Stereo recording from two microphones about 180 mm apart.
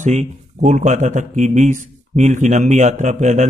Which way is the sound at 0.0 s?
40° right (ahead or behind).